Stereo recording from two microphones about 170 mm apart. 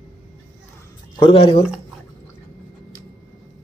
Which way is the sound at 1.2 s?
30° left (ahead or behind).